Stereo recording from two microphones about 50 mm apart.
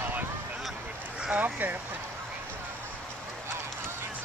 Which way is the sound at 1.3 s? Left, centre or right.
Right.